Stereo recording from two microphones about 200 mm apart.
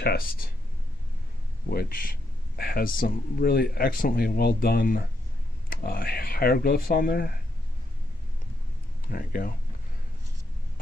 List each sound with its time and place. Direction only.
0.0 s speech: 55° left (ahead or behind)
1.7 s speech: 45° left (ahead or behind)
9.1 s speech: 45° left (ahead or behind)